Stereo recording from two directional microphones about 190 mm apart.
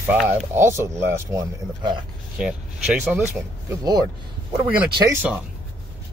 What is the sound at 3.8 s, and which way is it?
Speech, 20° right (ahead or behind).